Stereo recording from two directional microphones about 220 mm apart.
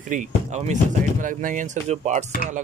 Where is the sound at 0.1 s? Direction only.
35° right (ahead or behind).